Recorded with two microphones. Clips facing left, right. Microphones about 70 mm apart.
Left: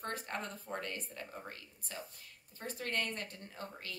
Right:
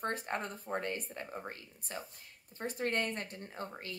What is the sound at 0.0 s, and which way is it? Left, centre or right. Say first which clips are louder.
Speech: right 4 dB; right.